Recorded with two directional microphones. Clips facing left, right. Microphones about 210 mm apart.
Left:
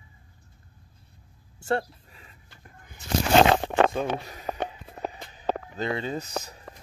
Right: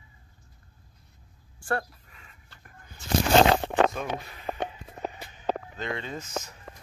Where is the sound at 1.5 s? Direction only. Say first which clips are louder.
Left 3 dB; 25° left (ahead or behind).